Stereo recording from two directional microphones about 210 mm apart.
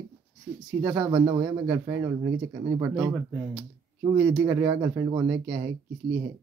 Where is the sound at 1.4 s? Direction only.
10° right (ahead or behind).